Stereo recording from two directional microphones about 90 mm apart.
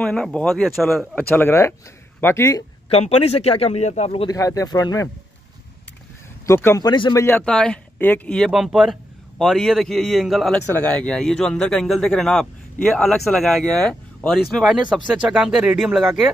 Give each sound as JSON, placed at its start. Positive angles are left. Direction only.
{"t": 0.0, "sound": "speech", "side_deg": 5}
{"t": 0.7, "sound": "a man's voice", "side_deg": 0}
{"t": 1.1, "sound": "speech", "side_deg": 15}
{"t": 2.9, "sound": "speech", "side_deg": 90}
{"t": 4.3, "sound": "speech", "side_deg": 40}
{"t": 6.4, "sound": "speech", "side_deg": 30}
{"t": 6.8, "sound": "speech", "side_deg": 50}
{"t": 7.2, "sound": "speech", "side_deg": 25}
{"t": 7.4, "sound": "speech", "side_deg": 10}
{"t": 8.0, "sound": "speech", "side_deg": 20}
{"t": 8.5, "sound": "a man's voice", "side_deg": -5}
{"t": 10.7, "sound": "a man's voice", "side_deg": 15}